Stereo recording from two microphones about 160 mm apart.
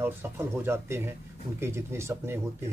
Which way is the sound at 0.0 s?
15° right (ahead or behind).